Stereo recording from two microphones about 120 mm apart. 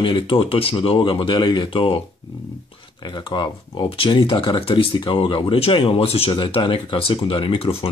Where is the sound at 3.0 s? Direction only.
40° left (ahead or behind).